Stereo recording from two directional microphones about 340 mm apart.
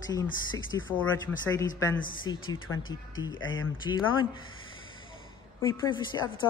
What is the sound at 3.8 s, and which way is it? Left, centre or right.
Speech, centre.